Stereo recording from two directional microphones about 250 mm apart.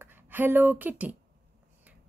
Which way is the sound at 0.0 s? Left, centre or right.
Centre.